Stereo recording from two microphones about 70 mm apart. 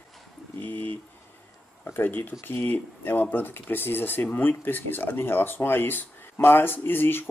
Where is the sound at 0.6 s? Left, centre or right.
Left.